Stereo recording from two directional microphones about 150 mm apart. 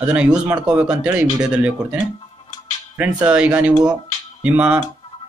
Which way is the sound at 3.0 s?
5° right (ahead or behind).